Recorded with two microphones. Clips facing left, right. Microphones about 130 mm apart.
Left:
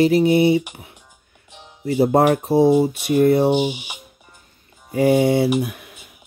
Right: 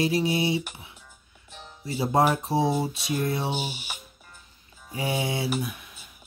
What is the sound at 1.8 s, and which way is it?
Speech, 60° left (ahead or behind).